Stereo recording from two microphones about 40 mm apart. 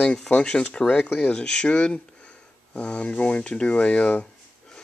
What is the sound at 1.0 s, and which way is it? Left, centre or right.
Speech, left.